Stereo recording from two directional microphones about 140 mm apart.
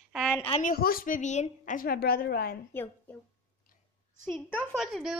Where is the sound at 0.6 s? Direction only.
90° left.